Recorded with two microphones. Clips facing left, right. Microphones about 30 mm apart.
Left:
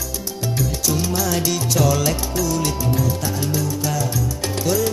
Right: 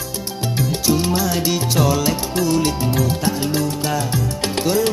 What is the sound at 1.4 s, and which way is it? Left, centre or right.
Music, right.